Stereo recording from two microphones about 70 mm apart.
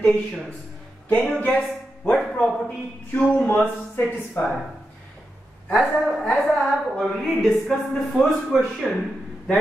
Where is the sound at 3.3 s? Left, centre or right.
Left.